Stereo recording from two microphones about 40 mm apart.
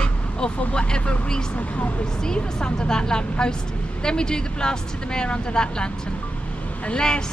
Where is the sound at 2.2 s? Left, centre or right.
Centre.